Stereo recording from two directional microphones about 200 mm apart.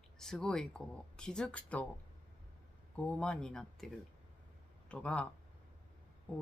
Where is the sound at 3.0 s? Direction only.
5° left (ahead or behind).